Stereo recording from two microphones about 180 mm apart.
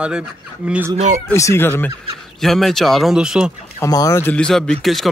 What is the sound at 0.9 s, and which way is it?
Speech, 40° right (ahead or behind).